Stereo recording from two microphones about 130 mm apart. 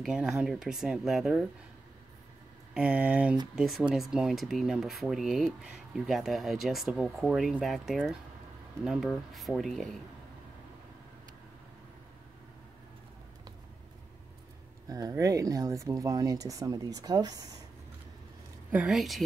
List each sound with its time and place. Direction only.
0.0 s speech: 5° right (ahead or behind)
2.7 s speech: 10° right (ahead or behind)
14.9 s speech: 25° right (ahead or behind)
18.7 s speech: 10° right (ahead or behind)
18.9 s speech: centre (ahead or behind)